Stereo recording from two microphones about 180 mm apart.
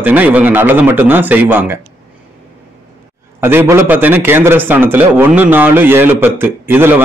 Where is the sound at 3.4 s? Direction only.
10° right (ahead or behind).